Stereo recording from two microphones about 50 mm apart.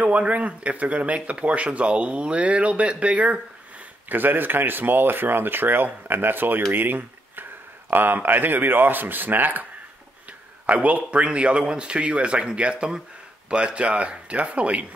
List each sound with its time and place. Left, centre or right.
0.0 s speech: right
4.1 s speech: right
6.7 s a sound: right
7.9 s speech: right
10.7 s speech: right